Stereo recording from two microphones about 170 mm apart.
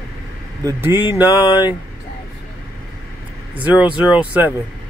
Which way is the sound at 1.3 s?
25° left (ahead or behind).